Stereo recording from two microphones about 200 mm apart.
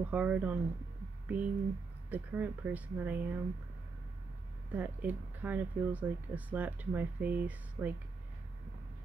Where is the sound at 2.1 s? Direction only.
5° right (ahead or behind).